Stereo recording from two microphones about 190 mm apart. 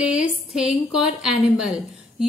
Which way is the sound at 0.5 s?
Centre (ahead or behind).